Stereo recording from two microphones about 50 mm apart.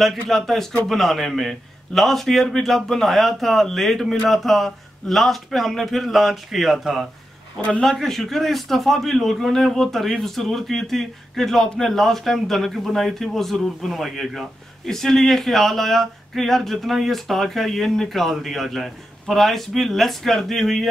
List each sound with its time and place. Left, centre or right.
0.0 s a man's voice: centre
7.5 s speech: left
7.8 s a man's voice: centre